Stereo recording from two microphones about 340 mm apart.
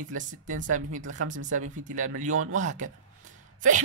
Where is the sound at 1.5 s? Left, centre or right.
Right.